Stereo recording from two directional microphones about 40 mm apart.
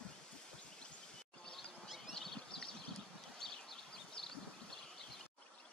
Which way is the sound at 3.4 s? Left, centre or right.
Centre.